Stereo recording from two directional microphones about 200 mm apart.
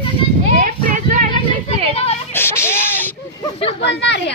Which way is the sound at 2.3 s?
10° left (ahead or behind).